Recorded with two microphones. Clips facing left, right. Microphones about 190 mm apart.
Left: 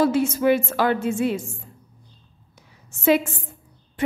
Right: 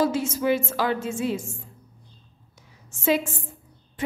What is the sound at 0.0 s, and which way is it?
A woman's voice, 60° left (ahead or behind).